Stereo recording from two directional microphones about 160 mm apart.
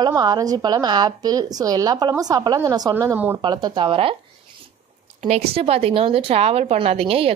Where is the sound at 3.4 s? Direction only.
25° right (ahead or behind).